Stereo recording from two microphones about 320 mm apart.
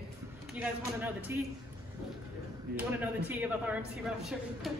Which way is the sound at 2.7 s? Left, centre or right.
Centre.